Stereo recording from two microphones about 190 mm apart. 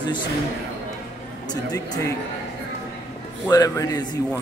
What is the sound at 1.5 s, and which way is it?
Speech, 20° left (ahead or behind).